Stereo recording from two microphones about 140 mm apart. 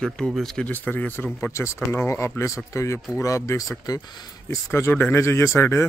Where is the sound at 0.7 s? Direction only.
15° left (ahead or behind); by 4.6 s 30° left (ahead or behind).